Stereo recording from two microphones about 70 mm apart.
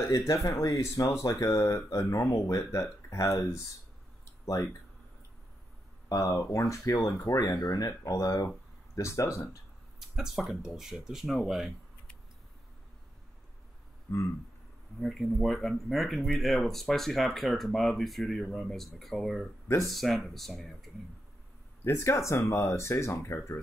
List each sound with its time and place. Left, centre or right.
0.1 s speech: left
6.2 s speech: left
8.9 s speech: left
9.9 s speech: centre
14.1 s a sound: left
15.0 s speech: centre
21.8 s speech: left